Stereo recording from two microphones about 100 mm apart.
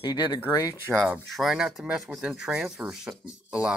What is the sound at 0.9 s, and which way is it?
Speech, 5° right (ahead or behind).